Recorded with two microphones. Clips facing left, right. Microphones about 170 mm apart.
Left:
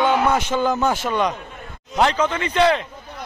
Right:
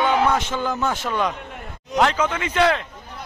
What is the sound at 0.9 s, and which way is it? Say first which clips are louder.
Speech: left 2 dB; centre (ahead or behind).